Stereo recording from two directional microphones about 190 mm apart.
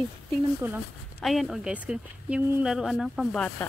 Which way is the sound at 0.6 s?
10° right (ahead or behind).